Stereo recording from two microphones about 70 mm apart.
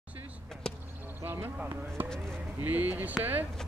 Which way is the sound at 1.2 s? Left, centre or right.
Right.